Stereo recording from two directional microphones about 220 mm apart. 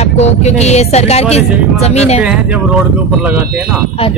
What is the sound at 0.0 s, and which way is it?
A woman's voice, 30° left (ahead or behind).